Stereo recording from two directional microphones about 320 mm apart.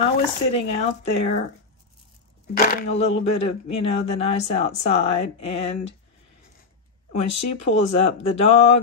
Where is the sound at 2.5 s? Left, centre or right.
Left.